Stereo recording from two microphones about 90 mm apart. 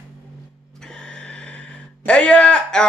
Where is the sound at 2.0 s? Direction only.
10° left (ahead or behind).